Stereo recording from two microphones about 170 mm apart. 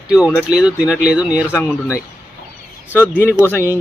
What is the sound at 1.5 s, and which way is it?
Speech, 15° left (ahead or behind).